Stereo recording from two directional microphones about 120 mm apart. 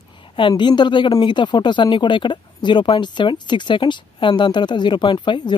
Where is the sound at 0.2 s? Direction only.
45° left (ahead or behind).